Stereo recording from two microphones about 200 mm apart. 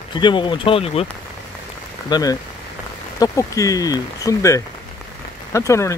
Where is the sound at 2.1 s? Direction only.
20° left (ahead or behind).